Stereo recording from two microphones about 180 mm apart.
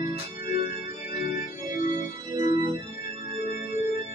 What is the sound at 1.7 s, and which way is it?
Organ, 20° right (ahead or behind).